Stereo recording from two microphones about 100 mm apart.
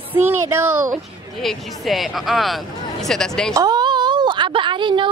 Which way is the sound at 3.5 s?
40° right (ahead or behind).